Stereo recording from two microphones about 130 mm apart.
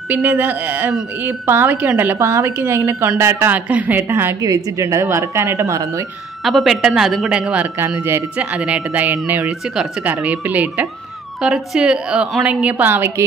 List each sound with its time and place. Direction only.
0.1 s a woman's voice: 15° right (ahead or behind)
4.4 s speech: 25° right (ahead or behind)
6.4 s a woman's voice: centre (ahead or behind)